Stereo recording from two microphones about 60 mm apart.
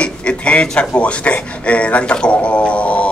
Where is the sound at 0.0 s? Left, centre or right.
Centre.